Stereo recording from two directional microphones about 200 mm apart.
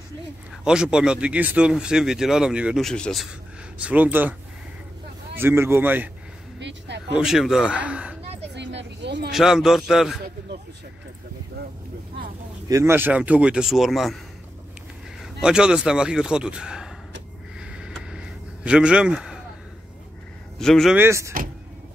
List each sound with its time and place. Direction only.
0.7 s speech: 5° right (ahead or behind)
7.2 s speech: centre (ahead or behind)
8.5 s vehicle: 60° right (ahead or behind)
9.3 s speech: centre (ahead or behind)
12.6 s speech: 15° right (ahead or behind)
15.4 s speech: 5° right (ahead or behind)
17.6 s a sound: 5° right (ahead or behind)
20.5 s a man's voice: centre (ahead or behind)
21.0 s speech: 15° right (ahead or behind)